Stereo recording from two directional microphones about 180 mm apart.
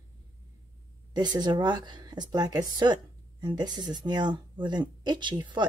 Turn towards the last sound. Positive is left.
turn(degrees=-25)  # may be behind; listen again after turning